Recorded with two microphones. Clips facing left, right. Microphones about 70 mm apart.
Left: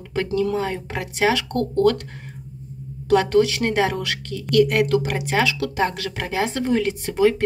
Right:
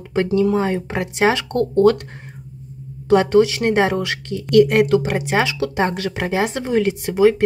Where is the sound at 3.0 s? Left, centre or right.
Right.